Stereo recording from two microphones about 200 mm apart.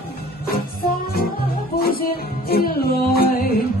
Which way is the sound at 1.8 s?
50° left (ahead or behind).